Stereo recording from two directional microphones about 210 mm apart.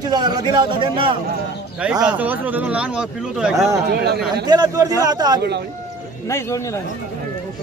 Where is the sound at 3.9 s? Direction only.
50° right (ahead or behind).